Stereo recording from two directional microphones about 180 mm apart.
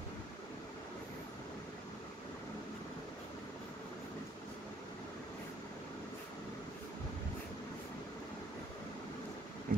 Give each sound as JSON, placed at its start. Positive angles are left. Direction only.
{"t": 9.7, "sound": "vehicle", "side_deg": -50}